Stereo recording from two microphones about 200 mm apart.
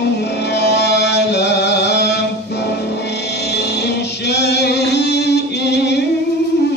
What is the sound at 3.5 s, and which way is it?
Music, 55° left (ahead or behind).